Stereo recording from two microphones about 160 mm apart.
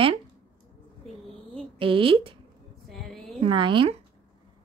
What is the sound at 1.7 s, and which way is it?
Speech, 35° right (ahead or behind).